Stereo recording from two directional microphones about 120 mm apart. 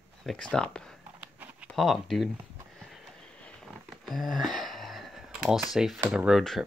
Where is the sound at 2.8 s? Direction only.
Centre (ahead or behind).